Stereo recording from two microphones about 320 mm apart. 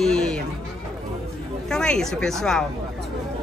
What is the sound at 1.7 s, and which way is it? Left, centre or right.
Speech, centre.